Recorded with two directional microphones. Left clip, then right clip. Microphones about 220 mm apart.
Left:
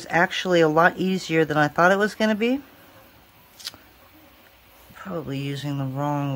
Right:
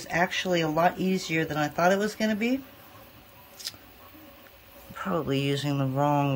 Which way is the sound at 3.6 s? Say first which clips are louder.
Left 2 dB; 10° left (ahead or behind).